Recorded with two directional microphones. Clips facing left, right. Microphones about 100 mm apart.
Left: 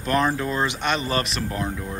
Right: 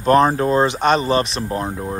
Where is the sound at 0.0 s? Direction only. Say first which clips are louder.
Right 8 dB; 40° right (ahead or behind).